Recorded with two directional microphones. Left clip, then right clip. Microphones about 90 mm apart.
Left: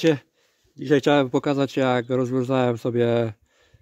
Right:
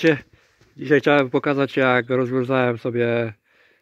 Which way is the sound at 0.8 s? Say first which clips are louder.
Right 2 dB; 25° left (ahead or behind).